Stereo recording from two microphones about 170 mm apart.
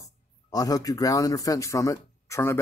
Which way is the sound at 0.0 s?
20° left (ahead or behind).